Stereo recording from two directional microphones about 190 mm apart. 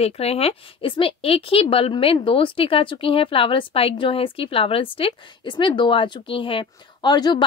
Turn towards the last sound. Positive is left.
turn(degrees=20)  # may be behind; listen again after turning